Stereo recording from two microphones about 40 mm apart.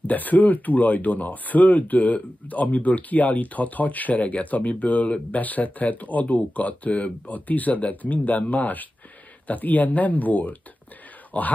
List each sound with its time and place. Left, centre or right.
0.0 s speech: left